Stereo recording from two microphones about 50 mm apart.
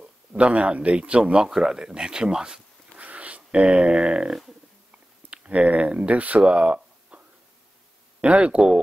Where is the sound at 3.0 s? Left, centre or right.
Right.